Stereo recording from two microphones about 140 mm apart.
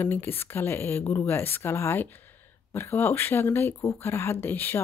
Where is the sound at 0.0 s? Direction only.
15° left (ahead or behind).